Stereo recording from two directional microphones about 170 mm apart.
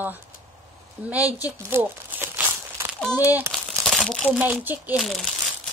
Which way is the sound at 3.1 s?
10° right (ahead or behind).